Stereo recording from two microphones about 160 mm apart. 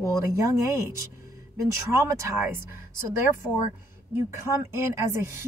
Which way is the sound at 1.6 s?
15° right (ahead or behind).